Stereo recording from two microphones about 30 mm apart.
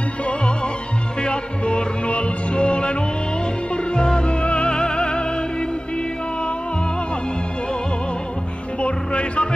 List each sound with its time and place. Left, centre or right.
0.2 s music: left
8.8 s music: left